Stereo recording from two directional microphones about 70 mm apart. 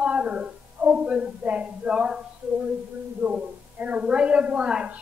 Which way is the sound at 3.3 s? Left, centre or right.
Centre.